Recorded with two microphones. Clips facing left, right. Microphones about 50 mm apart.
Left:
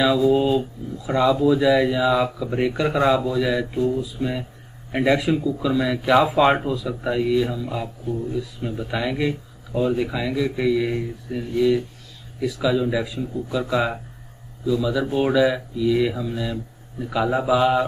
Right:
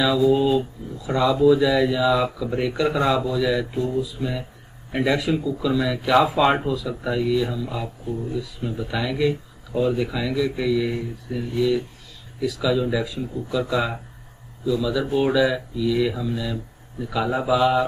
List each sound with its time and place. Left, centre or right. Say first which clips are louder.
0.0 s speech: left 1 dB; centre